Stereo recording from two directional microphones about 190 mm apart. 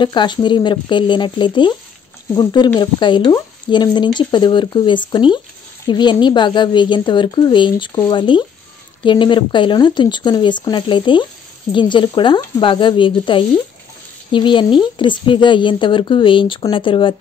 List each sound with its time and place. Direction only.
0.0 s speech: 25° left (ahead or behind)